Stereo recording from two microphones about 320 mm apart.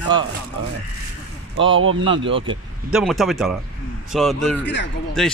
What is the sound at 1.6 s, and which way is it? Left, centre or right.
Speech, right.